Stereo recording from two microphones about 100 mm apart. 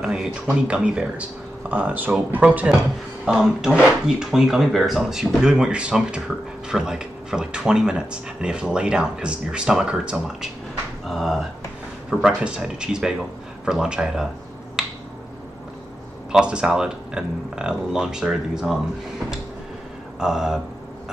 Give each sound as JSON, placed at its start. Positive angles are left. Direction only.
{"t": 0.0, "sound": "speech", "side_deg": -5}
{"t": 14.8, "sound": "finger snapping", "side_deg": -5}
{"t": 16.3, "sound": "speech", "side_deg": -10}
{"t": 20.2, "sound": "speech", "side_deg": -5}